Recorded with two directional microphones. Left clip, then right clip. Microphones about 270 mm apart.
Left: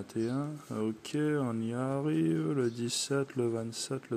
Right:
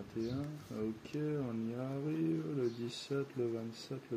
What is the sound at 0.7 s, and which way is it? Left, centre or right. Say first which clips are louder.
Speech: left 7 dB; left.